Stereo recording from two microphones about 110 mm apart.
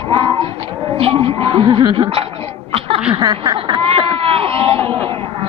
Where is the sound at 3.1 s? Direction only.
45° right (ahead or behind).